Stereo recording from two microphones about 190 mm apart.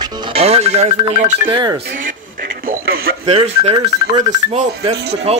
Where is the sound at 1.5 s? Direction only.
25° right (ahead or behind).